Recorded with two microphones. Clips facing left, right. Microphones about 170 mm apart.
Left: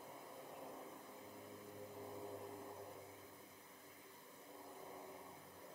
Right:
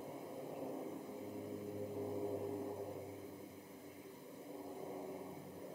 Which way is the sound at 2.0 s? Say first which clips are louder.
Right 9 dB; 30° right (ahead or behind).